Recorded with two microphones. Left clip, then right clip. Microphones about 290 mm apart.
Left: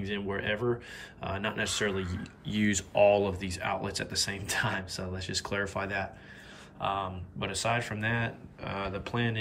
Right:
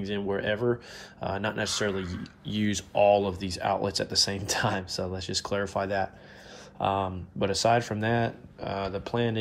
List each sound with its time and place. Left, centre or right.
0.0 s speech: centre